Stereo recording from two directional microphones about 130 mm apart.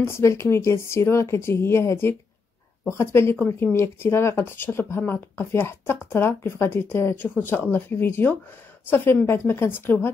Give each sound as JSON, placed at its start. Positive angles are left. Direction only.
{"t": 0.0, "sound": "a woman's voice", "side_deg": 20}